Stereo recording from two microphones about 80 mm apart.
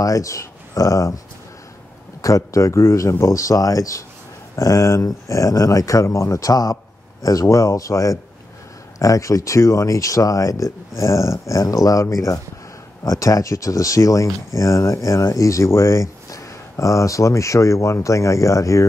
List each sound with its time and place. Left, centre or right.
0.0 s speech: left
2.2 s speech: left